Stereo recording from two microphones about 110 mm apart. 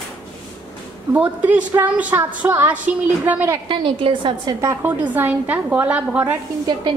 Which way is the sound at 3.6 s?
50° right (ahead or behind).